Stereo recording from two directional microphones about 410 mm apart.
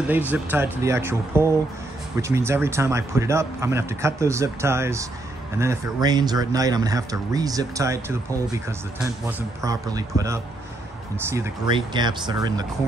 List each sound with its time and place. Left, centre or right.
0.0 s speech: centre
9.6 s speech: centre